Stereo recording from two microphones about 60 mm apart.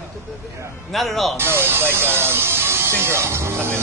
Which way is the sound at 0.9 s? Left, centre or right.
Centre.